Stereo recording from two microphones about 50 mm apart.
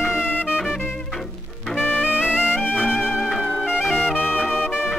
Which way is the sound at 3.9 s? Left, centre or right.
Left.